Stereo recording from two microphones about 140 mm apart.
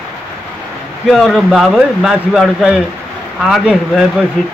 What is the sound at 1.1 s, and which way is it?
Speech, centre (ahead or behind).